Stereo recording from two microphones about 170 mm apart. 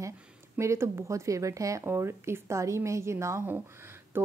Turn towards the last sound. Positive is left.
turn(degrees=-15)  # may be behind; listen again after turning